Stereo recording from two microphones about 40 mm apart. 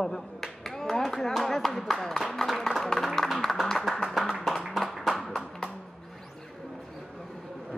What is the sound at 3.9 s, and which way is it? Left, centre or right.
Music, centre.